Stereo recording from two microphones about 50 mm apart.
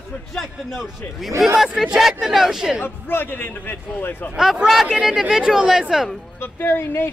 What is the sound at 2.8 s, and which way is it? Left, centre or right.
A man's voice, left.